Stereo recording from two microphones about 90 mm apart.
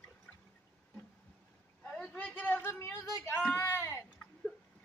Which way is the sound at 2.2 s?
20° left (ahead or behind).